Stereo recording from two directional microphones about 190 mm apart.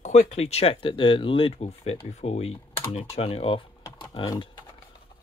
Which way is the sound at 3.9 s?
20° left (ahead or behind).